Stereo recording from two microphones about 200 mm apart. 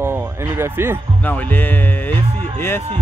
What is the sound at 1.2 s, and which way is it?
Speech, 10° left (ahead or behind).